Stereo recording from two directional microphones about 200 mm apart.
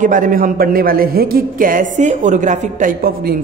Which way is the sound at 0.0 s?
40° right (ahead or behind).